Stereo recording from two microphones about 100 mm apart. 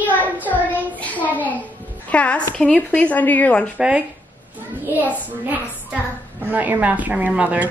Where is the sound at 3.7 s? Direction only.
10° right (ahead or behind).